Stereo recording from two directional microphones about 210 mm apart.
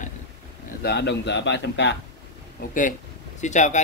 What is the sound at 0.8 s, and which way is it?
Speech, 55° left (ahead or behind).